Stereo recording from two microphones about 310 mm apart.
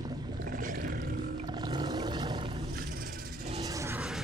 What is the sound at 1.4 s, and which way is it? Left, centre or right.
Roar, centre.